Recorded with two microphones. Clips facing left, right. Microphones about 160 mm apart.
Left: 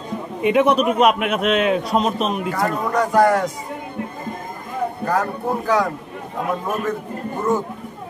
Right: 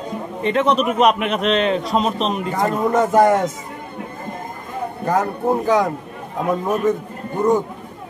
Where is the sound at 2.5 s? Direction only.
20° right (ahead or behind).